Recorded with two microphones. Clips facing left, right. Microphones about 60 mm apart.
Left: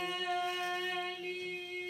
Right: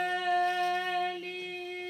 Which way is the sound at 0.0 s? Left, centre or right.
Right.